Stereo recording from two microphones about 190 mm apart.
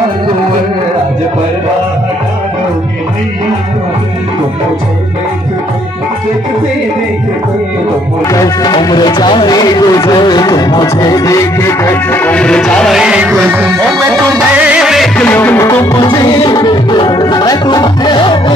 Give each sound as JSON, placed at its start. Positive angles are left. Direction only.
{"t": 8.3, "sound": "music", "side_deg": 20}